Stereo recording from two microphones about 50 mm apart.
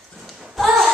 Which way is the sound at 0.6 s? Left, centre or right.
Centre.